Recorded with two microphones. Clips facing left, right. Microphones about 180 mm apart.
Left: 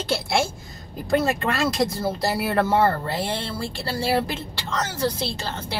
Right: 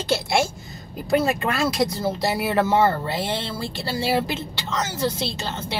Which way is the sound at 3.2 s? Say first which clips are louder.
Right 1 dB; 20° right (ahead or behind).